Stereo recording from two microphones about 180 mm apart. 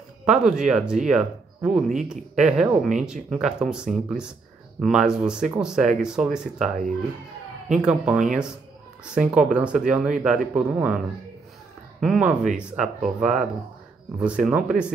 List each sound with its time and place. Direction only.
0.2 s speech: 5° right (ahead or behind)
7.7 s speech: 5° right (ahead or behind)
12.0 s speech: 5° right (ahead or behind)